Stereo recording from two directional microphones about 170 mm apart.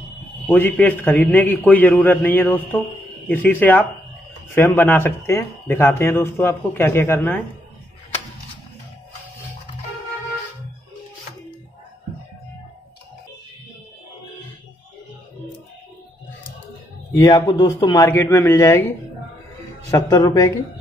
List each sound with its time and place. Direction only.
0.6 s speech: 10° left (ahead or behind)
17.1 s speech: 20° left (ahead or behind)